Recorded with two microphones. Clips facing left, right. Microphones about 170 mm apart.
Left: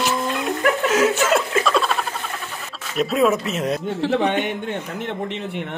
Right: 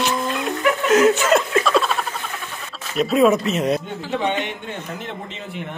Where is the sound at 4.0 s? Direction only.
55° left (ahead or behind).